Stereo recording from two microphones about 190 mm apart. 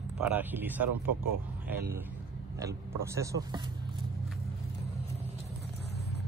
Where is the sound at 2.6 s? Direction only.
15° right (ahead or behind).